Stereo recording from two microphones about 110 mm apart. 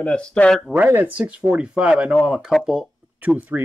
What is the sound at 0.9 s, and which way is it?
Speech, 15° right (ahead or behind).